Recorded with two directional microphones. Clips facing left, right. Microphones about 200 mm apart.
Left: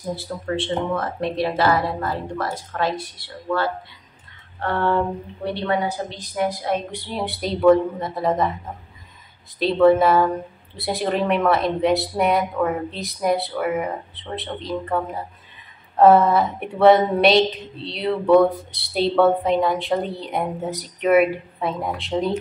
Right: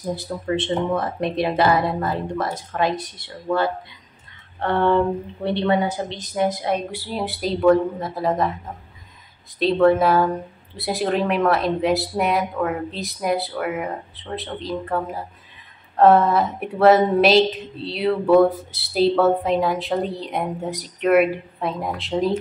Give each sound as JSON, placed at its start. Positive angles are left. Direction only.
{"t": 0.1, "sound": "speech", "side_deg": -20}
{"t": 6.9, "sound": "a woman's voice", "side_deg": -5}
{"t": 9.6, "sound": "a woman's voice", "side_deg": 0}